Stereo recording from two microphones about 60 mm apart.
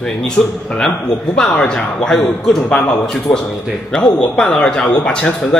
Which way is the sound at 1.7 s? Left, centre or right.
Centre.